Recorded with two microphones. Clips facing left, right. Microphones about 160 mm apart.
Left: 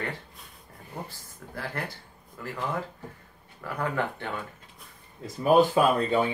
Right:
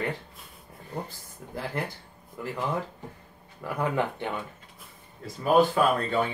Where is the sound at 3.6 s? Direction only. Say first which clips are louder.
Right 2 dB; 15° right (ahead or behind).